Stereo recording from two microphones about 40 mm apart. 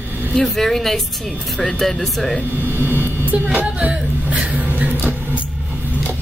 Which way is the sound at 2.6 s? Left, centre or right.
Right.